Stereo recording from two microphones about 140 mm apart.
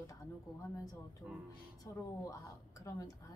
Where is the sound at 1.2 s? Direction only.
10° right (ahead or behind).